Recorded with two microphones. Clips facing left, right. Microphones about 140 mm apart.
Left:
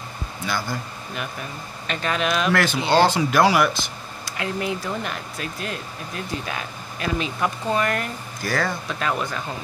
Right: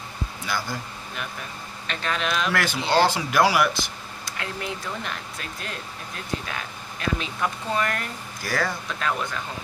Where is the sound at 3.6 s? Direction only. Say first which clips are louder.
Left 2 dB; 10° right (ahead or behind).